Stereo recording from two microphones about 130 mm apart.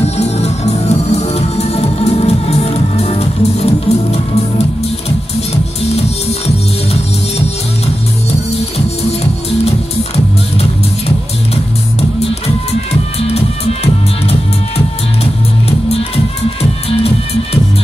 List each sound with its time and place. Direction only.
0.0 s music: 55° left (ahead or behind)
5.9 s music: 50° left (ahead or behind)
8.3 s music: 50° left (ahead or behind)